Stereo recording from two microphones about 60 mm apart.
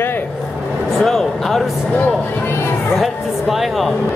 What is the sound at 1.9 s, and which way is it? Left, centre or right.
Speech, left.